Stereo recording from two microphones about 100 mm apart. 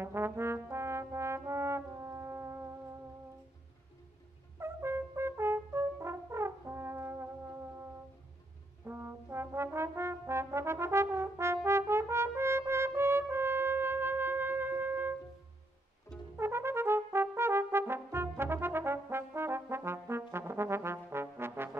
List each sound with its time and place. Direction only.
0.0 s brass instrument: 25° right (ahead or behind)
4.6 s brass instrument: 25° right (ahead or behind)
8.8 s brass instrument: 25° right (ahead or behind)
16.3 s brass instrument: 25° right (ahead or behind)